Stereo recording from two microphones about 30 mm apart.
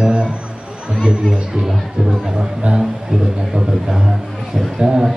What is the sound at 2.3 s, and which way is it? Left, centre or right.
A man's voice, right.